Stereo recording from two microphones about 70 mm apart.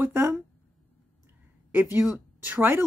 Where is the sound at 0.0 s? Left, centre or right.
Right.